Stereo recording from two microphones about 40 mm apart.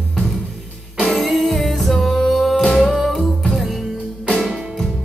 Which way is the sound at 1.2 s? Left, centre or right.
Centre.